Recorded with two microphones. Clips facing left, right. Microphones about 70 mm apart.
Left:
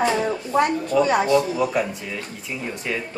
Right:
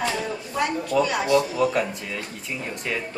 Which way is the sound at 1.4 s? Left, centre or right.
Centre.